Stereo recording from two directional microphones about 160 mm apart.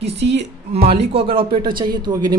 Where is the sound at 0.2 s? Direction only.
90° right.